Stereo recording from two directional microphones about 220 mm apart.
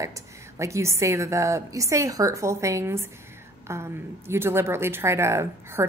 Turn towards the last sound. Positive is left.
turn(degrees=-10)  # may be behind; listen again after turning